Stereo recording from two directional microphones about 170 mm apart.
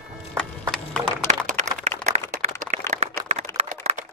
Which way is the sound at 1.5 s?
45° right (ahead or behind).